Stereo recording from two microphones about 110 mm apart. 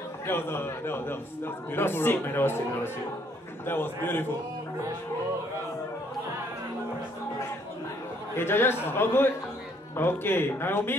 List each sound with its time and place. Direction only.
0.3 s a man's voice: 20° left (ahead or behind)
8.4 s a man's voice: 20° left (ahead or behind)